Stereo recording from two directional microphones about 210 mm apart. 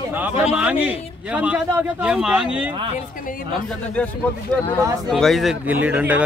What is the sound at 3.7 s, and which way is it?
Speech, 5° left (ahead or behind).